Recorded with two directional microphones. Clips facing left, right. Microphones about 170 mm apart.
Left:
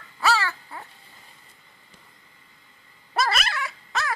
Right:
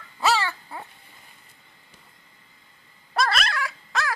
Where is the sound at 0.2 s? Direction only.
20° right (ahead or behind).